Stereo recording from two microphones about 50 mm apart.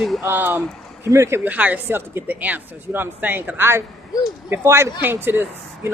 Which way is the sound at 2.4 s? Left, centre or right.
Right.